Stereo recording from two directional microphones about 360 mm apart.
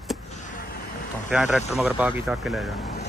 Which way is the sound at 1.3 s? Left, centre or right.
Centre.